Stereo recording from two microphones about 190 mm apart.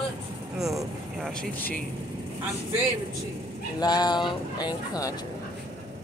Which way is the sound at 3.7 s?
20° left (ahead or behind).